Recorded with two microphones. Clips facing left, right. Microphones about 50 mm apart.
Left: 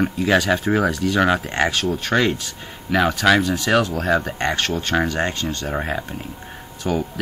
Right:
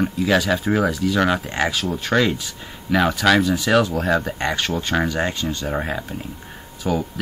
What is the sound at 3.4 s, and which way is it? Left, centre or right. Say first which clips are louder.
Speech: right 1 dB; left.